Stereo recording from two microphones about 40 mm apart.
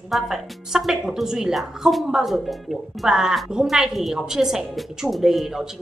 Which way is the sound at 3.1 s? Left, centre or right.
Centre.